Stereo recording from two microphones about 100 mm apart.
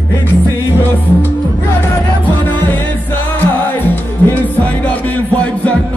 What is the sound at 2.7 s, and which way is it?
Music, 20° left (ahead or behind).